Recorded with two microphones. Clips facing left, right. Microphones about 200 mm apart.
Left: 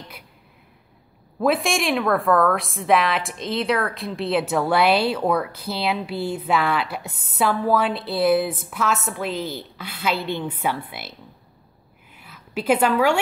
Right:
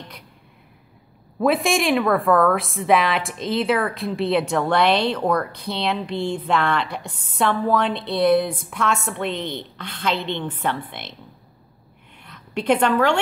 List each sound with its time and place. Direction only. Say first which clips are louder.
1.4 s a woman's voice: right 2 dB; centre (ahead or behind)
12.2 s a woman's voice: right 1 dB; 5° left (ahead or behind)